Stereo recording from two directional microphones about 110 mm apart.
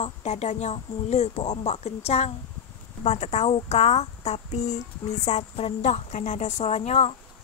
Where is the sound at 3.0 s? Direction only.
90° left.